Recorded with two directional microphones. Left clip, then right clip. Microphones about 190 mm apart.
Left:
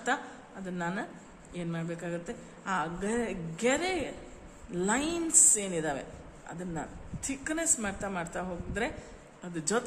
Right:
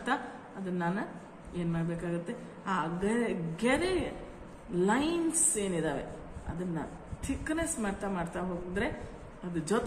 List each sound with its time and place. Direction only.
0.7 s a woman's voice: 45° left (ahead or behind)